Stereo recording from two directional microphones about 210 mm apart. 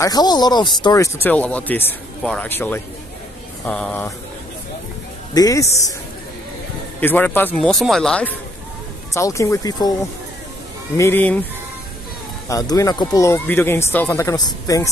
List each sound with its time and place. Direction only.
0.0 s a man's voice: 20° left (ahead or behind)
5.3 s speech: 15° left (ahead or behind)
7.0 s a man's voice: 10° left (ahead or behind)
11.0 s speech: 10° left (ahead or behind)
12.4 s speech: 15° left (ahead or behind)